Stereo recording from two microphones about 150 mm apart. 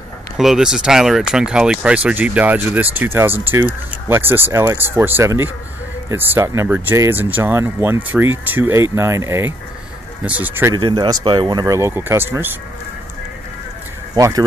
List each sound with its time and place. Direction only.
0.4 s speech: 5° right (ahead or behind)
10.7 s speech: 30° right (ahead or behind); by 12.5 s 15° right (ahead or behind)
14.1 s speech: 25° right (ahead or behind)